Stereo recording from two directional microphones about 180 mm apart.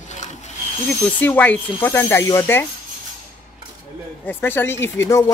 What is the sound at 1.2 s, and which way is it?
A woman's voice, 10° left (ahead or behind).